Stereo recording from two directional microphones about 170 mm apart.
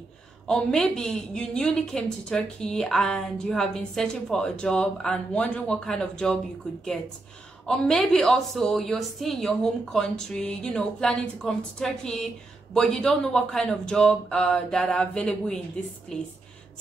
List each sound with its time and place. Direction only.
0.5 s a woman's voice: 5° left (ahead or behind)